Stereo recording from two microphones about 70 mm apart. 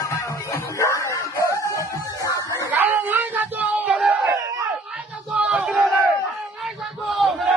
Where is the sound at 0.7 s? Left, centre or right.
Left.